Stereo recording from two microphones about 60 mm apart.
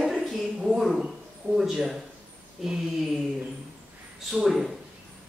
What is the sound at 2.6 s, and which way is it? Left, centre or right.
Speech, centre.